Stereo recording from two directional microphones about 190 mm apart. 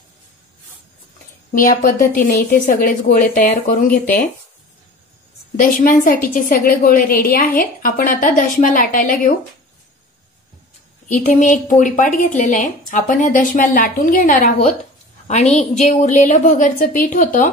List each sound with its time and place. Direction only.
1.5 s a woman's voice: 45° left (ahead or behind)
5.6 s a woman's voice: 45° left (ahead or behind)
11.1 s a woman's voice: 40° left (ahead or behind)